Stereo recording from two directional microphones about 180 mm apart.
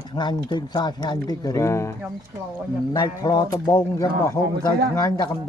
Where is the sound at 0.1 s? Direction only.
25° left (ahead or behind).